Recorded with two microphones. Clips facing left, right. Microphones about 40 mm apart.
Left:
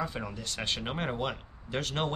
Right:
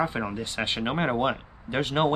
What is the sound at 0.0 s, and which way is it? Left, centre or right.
Speech, right.